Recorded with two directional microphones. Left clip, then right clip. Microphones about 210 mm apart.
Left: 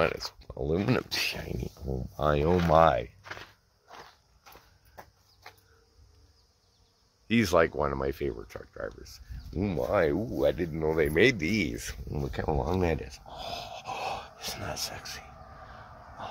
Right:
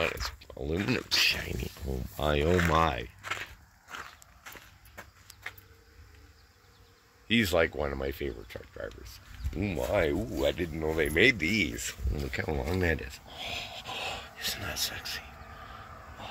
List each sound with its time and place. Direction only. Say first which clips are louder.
0.0 s speech: left 3 dB; 15° left (ahead or behind)
0.6 s speech: left 4 dB; 5° left (ahead or behind)
0.8 s speech: left 3 dB; 15° left (ahead or behind)
1.2 s speech: right 5 dB; 5° right (ahead or behind)
7.2 s speech: left 2 dB; centre (ahead or behind)
9.8 s speech: left 2 dB; 15° right (ahead or behind)